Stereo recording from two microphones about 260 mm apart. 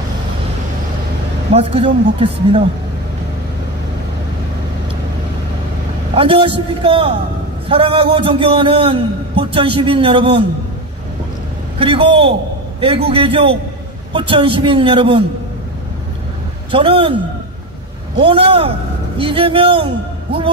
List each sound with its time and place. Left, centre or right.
1.5 s a man's voice: right
6.1 s a man's voice: centre
11.8 s a man's voice: centre
16.7 s a man's voice: centre
18.1 s a man's voice: centre